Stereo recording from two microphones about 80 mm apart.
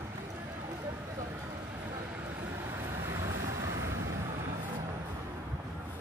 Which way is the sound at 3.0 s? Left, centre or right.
Right.